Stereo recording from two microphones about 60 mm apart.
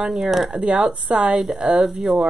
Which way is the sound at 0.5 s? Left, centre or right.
Centre.